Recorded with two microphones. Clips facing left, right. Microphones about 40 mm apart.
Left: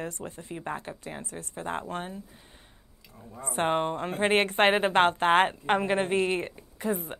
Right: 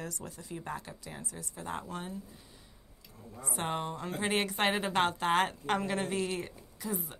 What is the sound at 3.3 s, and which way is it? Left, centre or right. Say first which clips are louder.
A woman's voice: left 8 dB; left.